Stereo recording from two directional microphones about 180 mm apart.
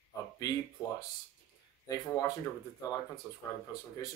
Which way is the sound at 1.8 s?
15° left (ahead or behind).